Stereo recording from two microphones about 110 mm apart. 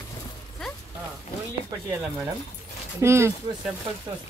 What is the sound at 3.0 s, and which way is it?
Speech, 25° right (ahead or behind).